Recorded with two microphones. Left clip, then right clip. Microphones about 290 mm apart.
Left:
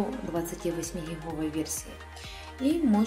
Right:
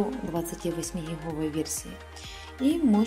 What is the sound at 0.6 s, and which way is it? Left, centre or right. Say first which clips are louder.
Speech: even; centre.